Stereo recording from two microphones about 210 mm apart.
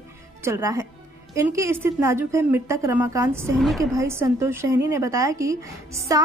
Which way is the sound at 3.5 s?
Centre (ahead or behind).